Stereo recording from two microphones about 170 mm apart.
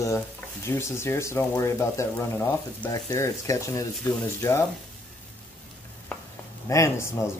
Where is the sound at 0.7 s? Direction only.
15° left (ahead or behind).